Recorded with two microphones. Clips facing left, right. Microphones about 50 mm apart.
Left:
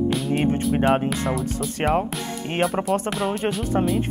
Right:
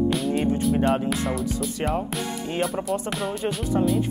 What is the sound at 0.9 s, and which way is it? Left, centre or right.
Speech, centre.